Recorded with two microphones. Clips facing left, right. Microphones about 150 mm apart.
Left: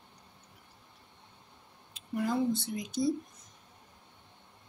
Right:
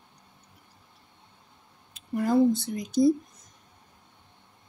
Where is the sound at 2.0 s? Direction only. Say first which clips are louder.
Right 8 dB; 45° right (ahead or behind).